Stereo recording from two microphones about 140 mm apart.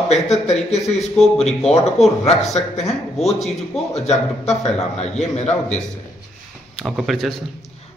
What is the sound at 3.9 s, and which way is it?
A man's voice, 50° left (ahead or behind).